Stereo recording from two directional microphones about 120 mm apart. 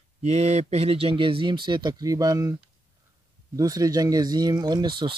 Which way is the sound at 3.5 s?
30° right (ahead or behind).